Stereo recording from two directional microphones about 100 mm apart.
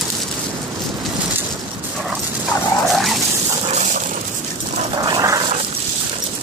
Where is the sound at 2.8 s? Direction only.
Centre (ahead or behind).